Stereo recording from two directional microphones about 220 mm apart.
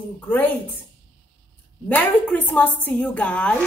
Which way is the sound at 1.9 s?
5° left (ahead or behind).